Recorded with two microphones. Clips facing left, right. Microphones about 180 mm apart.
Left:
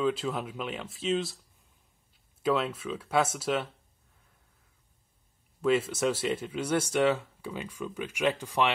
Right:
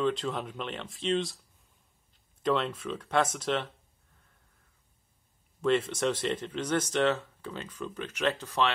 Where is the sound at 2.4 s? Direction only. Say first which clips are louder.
Left 1 dB; 5° left (ahead or behind).